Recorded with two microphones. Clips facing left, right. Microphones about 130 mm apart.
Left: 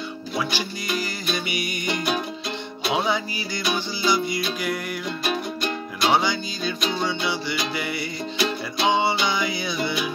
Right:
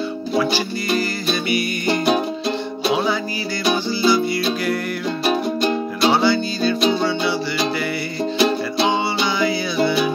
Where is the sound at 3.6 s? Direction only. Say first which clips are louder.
Right 7 dB; 30° right (ahead or behind).